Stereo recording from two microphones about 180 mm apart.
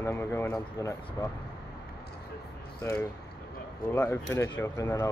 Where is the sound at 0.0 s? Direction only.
15° left (ahead or behind).